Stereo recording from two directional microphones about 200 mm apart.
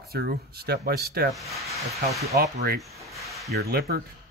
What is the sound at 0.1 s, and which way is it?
Speech, 50° right (ahead or behind).